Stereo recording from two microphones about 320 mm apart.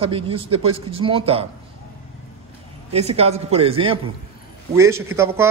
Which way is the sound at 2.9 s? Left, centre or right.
Centre.